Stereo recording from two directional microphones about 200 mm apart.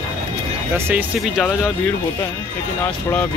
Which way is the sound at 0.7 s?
10° right (ahead or behind).